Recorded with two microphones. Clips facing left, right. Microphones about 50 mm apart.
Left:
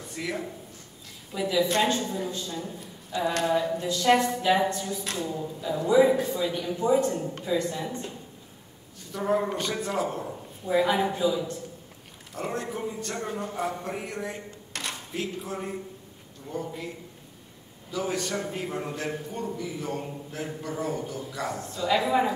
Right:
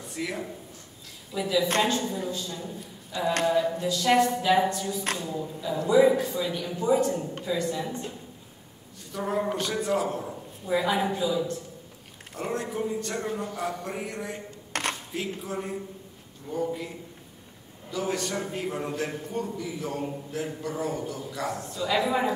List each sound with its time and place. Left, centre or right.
0.1 s a sound: centre
1.3 s a man's voice: centre
9.1 s a man's voice: centre
14.7 s a sound: right
15.1 s a man's voice: centre
17.9 s a man's voice: centre